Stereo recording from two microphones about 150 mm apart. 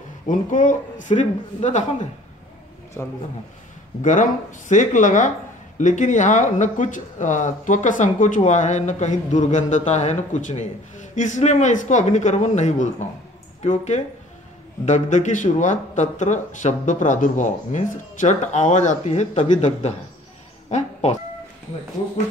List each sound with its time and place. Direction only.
0.3 s speech: 60° left (ahead or behind)
3.0 s a man's voice: 15° left (ahead or behind)
4.0 s speech: 55° left (ahead or behind)